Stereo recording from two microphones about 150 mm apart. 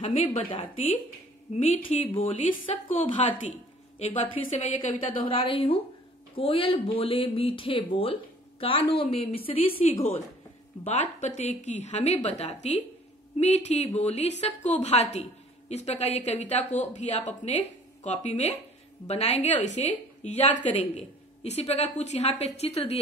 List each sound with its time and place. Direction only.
0.0 s a woman's voice: 40° left (ahead or behind)